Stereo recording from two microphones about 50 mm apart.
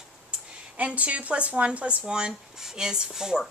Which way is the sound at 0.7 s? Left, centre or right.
Right.